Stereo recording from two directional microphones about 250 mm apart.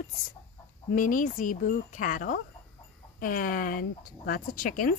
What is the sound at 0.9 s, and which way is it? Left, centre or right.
A woman's voice, left.